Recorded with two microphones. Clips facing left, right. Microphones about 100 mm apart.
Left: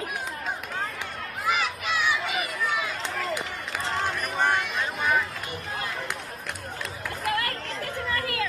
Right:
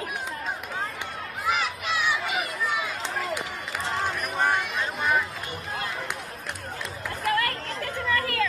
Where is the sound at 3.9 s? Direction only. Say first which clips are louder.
Even; centre (ahead or behind).